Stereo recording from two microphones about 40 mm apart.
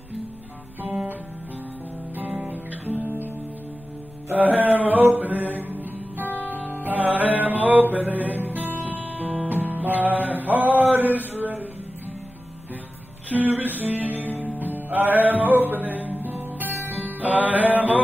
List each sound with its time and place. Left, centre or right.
2.4 s music: right
4.3 s music: right
8.8 s music: right
9.5 s music: right
13.3 s music: right